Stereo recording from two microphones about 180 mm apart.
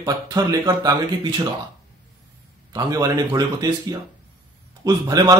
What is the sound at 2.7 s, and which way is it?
Speech, 20° right (ahead or behind).